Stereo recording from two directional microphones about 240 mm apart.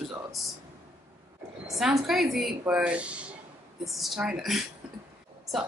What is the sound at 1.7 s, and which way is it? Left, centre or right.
A woman's voice, centre.